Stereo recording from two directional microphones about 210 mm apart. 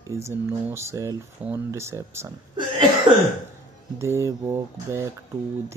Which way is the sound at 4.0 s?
15° right (ahead or behind).